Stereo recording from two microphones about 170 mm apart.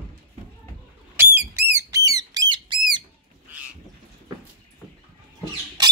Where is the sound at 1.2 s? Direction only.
15° right (ahead or behind).